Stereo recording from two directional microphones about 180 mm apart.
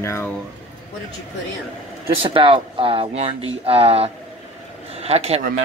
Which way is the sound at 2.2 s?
30° right (ahead or behind).